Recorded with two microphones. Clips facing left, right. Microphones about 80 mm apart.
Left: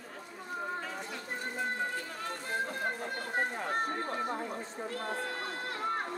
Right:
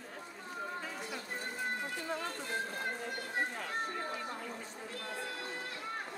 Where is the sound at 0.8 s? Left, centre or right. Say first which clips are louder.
Left 2 dB; centre.